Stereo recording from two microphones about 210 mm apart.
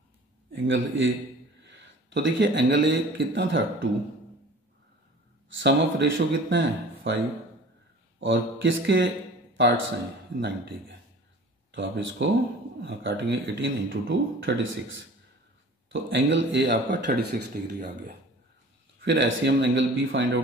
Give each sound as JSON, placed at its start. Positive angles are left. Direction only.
{"t": 0.5, "sound": "speech", "side_deg": -65}
{"t": 5.6, "sound": "speech", "side_deg": -55}
{"t": 8.2, "sound": "speech", "side_deg": -60}
{"t": 10.4, "sound": "speech", "side_deg": -55}
{"t": 15.9, "sound": "speech", "side_deg": -60}